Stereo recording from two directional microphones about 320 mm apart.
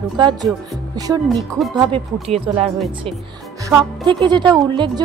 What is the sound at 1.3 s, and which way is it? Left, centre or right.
Speech, centre.